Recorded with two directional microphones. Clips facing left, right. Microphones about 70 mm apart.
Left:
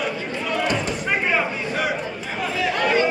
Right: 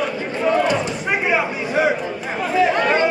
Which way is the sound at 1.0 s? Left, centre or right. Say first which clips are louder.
Right 2 dB; centre.